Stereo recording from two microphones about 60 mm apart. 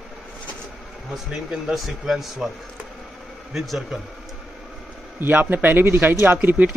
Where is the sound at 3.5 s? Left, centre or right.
Centre.